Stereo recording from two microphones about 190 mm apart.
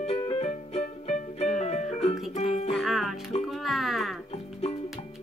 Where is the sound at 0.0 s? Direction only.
30° left (ahead or behind).